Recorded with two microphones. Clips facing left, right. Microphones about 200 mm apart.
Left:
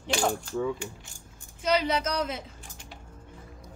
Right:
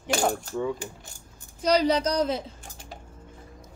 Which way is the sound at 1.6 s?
35° right (ahead or behind).